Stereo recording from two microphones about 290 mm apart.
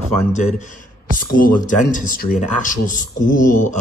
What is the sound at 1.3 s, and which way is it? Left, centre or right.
Speech, left.